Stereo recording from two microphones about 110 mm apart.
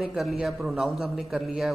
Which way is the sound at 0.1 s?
5° right (ahead or behind).